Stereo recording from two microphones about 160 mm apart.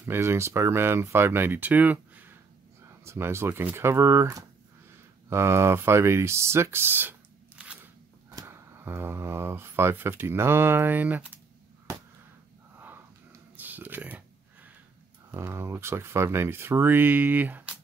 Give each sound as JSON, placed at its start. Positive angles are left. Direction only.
{"t": 0.0, "sound": "speech", "side_deg": -15}
{"t": 12.7, "sound": "a sound", "side_deg": -10}
{"t": 15.3, "sound": "speech", "side_deg": -15}